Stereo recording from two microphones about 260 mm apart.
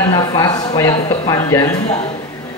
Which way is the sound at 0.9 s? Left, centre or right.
Left.